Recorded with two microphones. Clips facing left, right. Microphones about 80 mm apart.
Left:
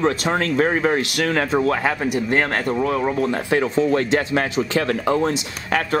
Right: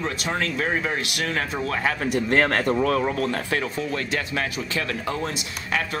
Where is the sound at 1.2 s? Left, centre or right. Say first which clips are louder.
Left 6 dB; left.